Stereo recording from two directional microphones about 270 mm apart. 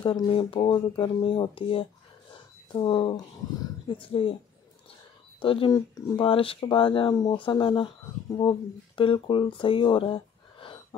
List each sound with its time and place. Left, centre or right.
0.0 s speech: centre
5.4 s speech: centre
9.6 s a sound: centre